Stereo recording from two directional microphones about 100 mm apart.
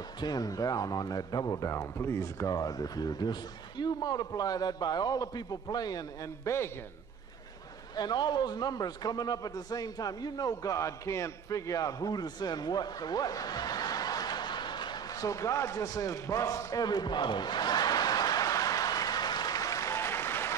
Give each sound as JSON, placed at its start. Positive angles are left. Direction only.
{"t": 0.2, "sound": "speech", "side_deg": 40}
{"t": 7.9, "sound": "a man's voice", "side_deg": 45}